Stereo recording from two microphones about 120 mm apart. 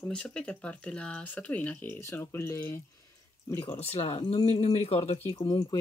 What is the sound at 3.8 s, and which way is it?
Speech, 55° left (ahead or behind).